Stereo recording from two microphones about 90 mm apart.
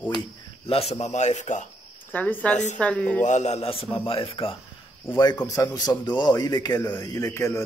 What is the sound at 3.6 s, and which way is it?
Speech, 90° left.